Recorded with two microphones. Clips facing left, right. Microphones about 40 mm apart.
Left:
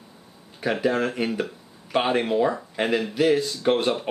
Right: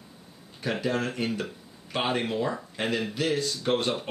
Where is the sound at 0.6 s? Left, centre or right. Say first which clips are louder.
Left 5 dB; centre.